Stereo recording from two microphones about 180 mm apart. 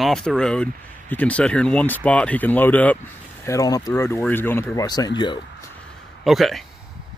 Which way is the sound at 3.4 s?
20° left (ahead or behind).